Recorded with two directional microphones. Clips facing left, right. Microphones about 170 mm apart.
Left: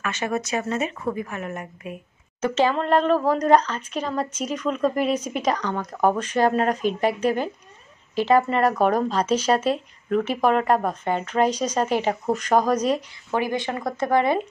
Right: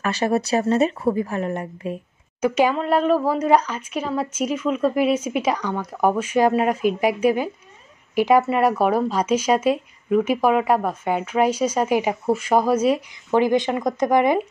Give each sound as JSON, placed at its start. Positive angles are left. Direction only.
{"t": 0.0, "sound": "speech", "side_deg": -35}
{"t": 2.4, "sound": "speech", "side_deg": -10}